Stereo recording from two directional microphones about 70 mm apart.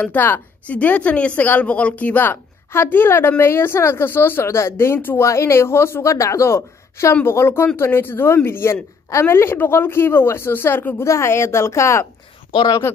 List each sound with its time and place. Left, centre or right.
0.0 s speech: left
11.1 s speech: left